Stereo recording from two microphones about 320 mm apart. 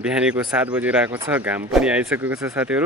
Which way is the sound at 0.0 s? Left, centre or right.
Centre.